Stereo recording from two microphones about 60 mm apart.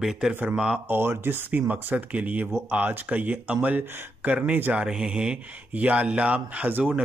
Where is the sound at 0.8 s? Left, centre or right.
Right; by 5.4 s centre.